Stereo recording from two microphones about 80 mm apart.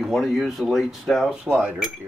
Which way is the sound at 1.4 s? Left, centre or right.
Centre.